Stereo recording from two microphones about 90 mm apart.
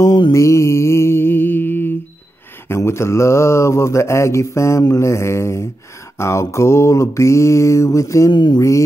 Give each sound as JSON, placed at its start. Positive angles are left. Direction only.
{"t": 0.3, "sound": "music", "side_deg": 35}
{"t": 2.7, "sound": "mantra", "side_deg": 30}
{"t": 8.3, "sound": "a sound", "side_deg": 60}
{"t": 8.5, "sound": "mantra", "side_deg": 35}